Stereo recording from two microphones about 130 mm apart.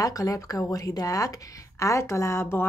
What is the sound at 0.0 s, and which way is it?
A woman's voice, 25° left (ahead or behind).